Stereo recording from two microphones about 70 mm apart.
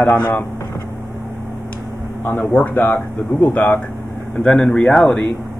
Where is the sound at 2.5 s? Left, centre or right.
Left.